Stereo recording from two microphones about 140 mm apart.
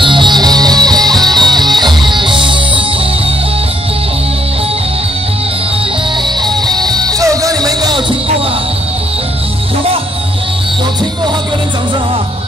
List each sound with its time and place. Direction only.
0.0 s music: 35° right (ahead or behind)
6.4 s music: 30° right (ahead or behind)